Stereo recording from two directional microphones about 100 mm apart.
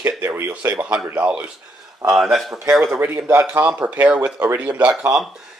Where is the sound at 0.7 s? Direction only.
10° right (ahead or behind).